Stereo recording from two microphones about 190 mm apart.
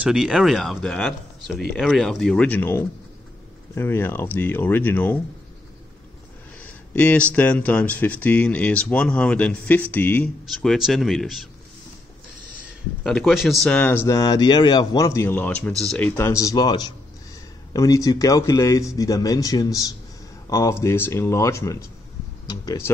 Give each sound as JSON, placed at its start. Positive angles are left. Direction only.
{"t": 0.0, "sound": "speech", "side_deg": -5}
{"t": 6.9, "sound": "speech", "side_deg": 5}
{"t": 13.0, "sound": "speech", "side_deg": 0}